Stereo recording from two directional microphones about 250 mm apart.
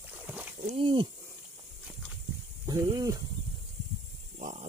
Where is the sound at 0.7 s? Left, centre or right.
Right.